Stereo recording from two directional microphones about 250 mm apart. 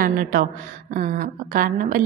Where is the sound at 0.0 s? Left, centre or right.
Right.